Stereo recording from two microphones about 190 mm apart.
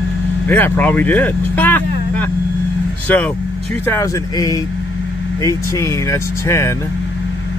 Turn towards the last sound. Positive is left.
turn(degrees=15)  # may be behind; listen again after turning